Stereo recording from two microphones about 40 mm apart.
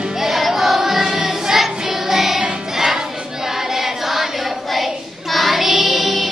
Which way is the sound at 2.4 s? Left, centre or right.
Centre.